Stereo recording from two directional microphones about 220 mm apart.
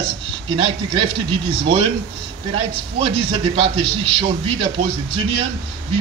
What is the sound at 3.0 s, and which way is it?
A man's voice, 25° right (ahead or behind).